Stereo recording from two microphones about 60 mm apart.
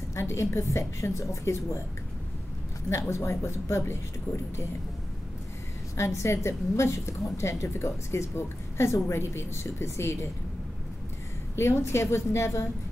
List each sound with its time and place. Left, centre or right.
0.1 s a woman's voice: left
2.9 s a woman's voice: left
4.3 s speech: left
5.9 s a woman's voice: left
11.5 s a woman's voice: left